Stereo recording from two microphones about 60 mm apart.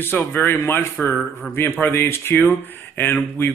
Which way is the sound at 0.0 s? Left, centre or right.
Left.